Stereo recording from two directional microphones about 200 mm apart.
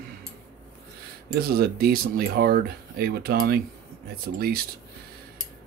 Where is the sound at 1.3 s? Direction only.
50° right (ahead or behind).